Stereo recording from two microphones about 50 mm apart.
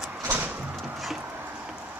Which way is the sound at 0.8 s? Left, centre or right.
Centre.